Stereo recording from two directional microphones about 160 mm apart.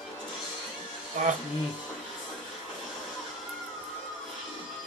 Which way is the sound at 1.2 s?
50° right (ahead or behind).